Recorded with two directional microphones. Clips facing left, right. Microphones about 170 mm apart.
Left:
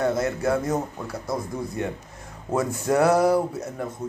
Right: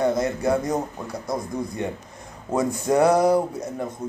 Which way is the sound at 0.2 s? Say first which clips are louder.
Right 1 dB; 15° right (ahead or behind).